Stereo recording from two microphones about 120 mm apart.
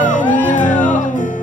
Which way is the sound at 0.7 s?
10° left (ahead or behind).